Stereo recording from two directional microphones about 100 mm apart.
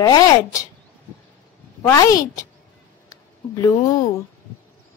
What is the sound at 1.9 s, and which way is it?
Speech, 30° left (ahead or behind).